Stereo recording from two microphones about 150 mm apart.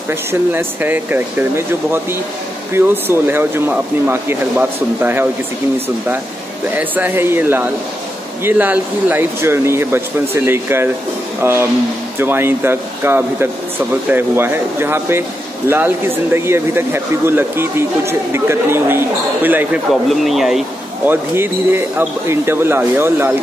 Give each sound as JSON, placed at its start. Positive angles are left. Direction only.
{"t": 0.1, "sound": "speech", "side_deg": -15}
{"t": 2.7, "sound": "speech", "side_deg": -15}
{"t": 6.7, "sound": "speech", "side_deg": -10}
{"t": 20.1, "sound": "speech", "side_deg": 0}
{"t": 21.0, "sound": "speech", "side_deg": -15}